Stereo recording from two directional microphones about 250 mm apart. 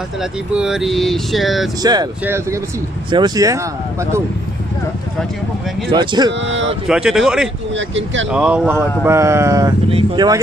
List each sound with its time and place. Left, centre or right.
0.2 s speech: centre
1.8 s speech: centre
5.9 s speech: centre
6.4 s speech: right
6.9 s speech: centre
7.7 s speech: right
8.3 s speech: centre